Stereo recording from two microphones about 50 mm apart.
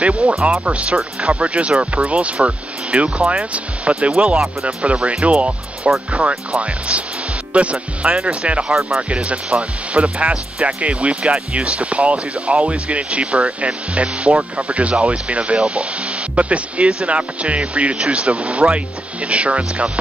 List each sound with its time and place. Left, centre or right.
0.0 s speech: right
8.6 s speech: centre
9.1 s speech: right